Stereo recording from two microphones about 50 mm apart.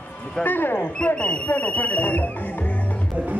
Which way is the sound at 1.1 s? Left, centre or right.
Left.